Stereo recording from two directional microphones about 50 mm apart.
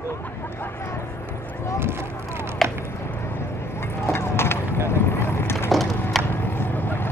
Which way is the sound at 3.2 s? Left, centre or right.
Left.